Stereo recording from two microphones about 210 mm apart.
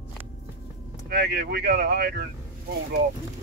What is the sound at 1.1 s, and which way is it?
Speech, 50° right (ahead or behind).